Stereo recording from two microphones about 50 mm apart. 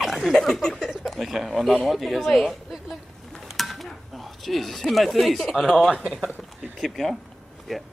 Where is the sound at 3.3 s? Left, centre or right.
Centre.